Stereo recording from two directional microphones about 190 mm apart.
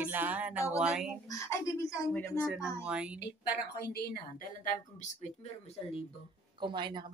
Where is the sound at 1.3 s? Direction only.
15° left (ahead or behind).